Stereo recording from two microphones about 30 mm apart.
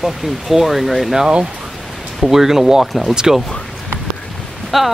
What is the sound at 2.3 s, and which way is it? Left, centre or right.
Speech, centre.